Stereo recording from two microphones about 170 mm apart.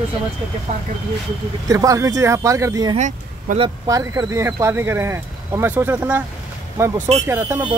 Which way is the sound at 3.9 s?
20° right (ahead or behind).